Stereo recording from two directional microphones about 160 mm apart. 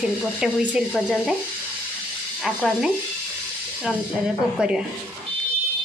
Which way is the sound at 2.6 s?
Centre (ahead or behind).